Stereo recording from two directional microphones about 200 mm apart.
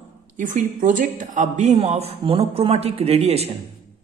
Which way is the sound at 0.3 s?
40° right (ahead or behind).